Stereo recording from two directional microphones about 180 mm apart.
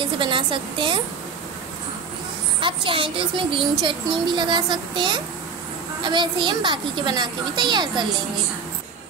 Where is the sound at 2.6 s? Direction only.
30° right (ahead or behind).